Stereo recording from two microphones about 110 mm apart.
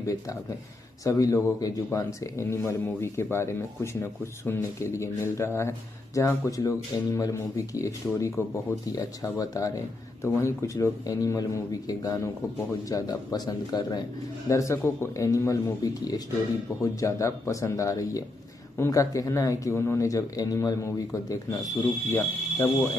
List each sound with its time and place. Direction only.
0.0 s speech: 30° left (ahead or behind)
14.5 s speech: 25° left (ahead or behind)